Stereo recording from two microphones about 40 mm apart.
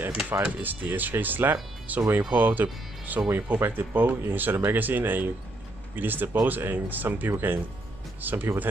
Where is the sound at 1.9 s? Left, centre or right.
Right.